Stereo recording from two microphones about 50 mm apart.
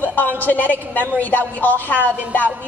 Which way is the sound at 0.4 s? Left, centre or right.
Left.